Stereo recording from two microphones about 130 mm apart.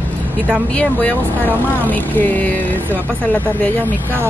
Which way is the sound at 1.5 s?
15° right (ahead or behind).